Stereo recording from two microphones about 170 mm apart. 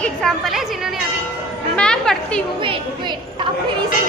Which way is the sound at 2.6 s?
30° right (ahead or behind).